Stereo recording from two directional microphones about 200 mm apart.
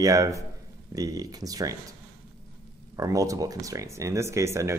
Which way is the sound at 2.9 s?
15° right (ahead or behind).